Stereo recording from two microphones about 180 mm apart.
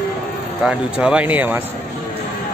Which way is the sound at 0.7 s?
5° right (ahead or behind).